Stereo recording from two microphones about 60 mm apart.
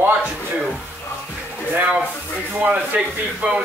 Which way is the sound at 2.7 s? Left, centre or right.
Right.